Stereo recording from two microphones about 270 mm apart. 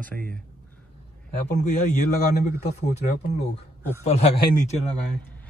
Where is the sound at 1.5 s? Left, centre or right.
Left.